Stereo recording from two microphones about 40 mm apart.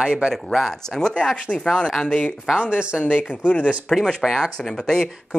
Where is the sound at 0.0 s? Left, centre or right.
Centre.